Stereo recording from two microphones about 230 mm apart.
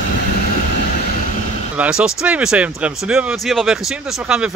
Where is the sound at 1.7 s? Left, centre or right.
Centre.